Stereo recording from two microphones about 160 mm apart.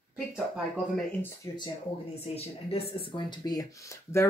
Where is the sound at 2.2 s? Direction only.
40° left (ahead or behind).